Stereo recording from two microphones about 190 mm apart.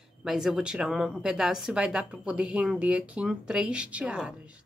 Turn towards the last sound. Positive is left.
turn(degrees=-5)  # may be behind; listen again after turning